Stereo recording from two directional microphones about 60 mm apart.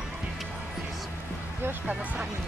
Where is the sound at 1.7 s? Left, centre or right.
Right.